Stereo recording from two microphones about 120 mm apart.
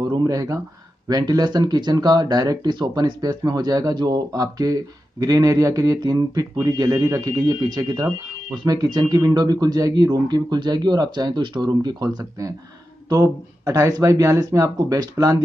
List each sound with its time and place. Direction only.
0.1 s speech: 30° right (ahead or behind)